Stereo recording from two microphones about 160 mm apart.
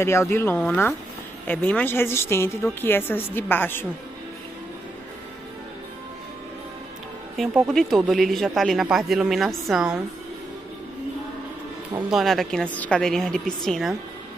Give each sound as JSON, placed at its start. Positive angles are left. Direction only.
{"t": 0.0, "sound": "speech", "side_deg": 15}
{"t": 7.3, "sound": "speech", "side_deg": 0}
{"t": 12.1, "sound": "speech", "side_deg": 0}